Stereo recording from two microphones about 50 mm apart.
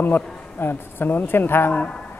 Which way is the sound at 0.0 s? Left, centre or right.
Left.